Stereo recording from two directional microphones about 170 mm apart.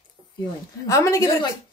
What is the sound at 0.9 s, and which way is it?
Speech, 20° left (ahead or behind).